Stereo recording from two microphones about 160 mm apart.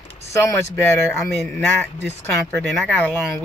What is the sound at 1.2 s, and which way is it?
Speech, centre (ahead or behind).